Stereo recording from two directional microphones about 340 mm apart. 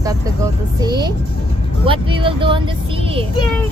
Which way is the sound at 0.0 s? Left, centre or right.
Centre.